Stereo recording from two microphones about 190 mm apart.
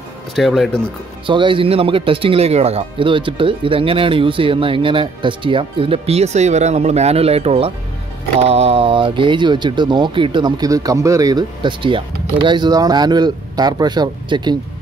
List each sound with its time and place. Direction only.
0.4 s speech: centre (ahead or behind)
1.2 s speech: 25° right (ahead or behind)